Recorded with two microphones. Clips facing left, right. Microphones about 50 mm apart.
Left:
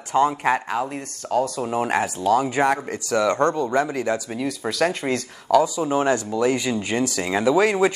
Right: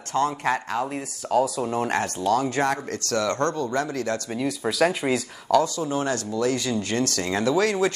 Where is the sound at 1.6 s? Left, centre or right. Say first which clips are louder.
Left 2 dB; centre.